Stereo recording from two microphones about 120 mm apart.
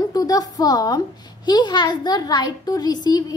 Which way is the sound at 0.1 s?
30° left (ahead or behind).